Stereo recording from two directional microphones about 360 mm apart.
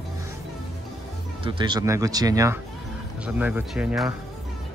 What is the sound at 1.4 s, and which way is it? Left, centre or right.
Speech, centre.